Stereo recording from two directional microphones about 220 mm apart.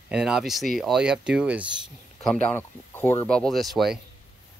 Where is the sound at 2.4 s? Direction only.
10° left (ahead or behind).